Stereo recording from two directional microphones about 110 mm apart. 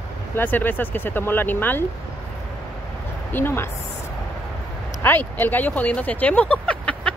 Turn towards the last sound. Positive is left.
turn(degrees=10)  # may be behind; listen again after turning